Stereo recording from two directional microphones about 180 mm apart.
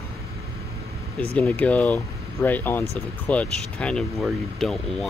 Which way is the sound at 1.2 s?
5° left (ahead or behind).